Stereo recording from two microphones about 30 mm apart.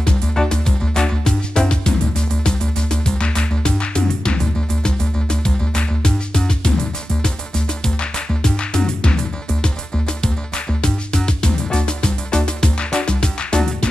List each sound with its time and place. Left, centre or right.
0.5 s music: left